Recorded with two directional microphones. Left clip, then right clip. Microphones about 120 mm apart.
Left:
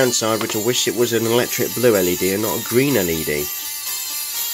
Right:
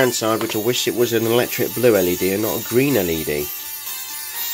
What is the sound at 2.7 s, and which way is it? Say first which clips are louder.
Speech: even; 5° left (ahead or behind).